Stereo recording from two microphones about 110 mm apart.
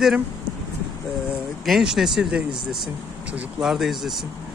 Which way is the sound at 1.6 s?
5° right (ahead or behind).